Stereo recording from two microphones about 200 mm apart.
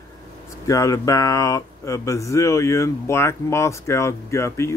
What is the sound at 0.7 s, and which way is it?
Speech, 15° left (ahead or behind).